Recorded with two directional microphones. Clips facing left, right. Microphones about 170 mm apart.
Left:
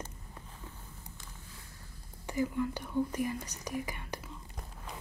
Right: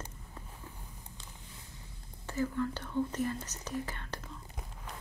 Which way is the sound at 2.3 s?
15° left (ahead or behind).